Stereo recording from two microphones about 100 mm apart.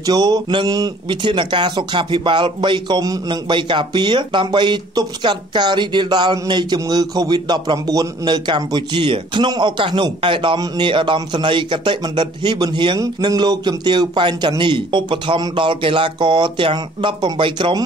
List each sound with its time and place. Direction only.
0.0 s speech: 40° right (ahead or behind); by 17.7 s 60° right (ahead or behind)